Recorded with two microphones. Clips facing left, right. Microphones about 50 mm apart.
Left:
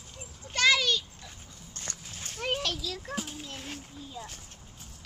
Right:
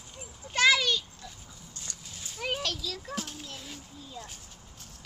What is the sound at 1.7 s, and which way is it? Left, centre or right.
Dog, left.